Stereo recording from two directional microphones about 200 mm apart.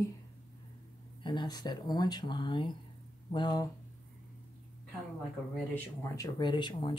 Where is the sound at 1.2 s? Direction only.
20° left (ahead or behind).